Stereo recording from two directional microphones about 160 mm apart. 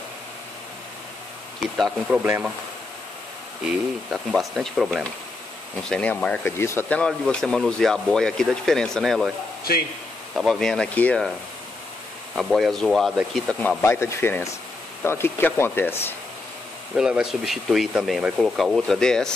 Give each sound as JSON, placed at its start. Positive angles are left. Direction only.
{"t": 1.8, "sound": "speech", "side_deg": -5}
{"t": 4.1, "sound": "speech", "side_deg": 0}
{"t": 10.3, "sound": "speech", "side_deg": 0}
{"t": 12.4, "sound": "speech", "side_deg": 0}
{"t": 13.5, "sound": "speech", "side_deg": 10}
{"t": 16.9, "sound": "speech", "side_deg": -5}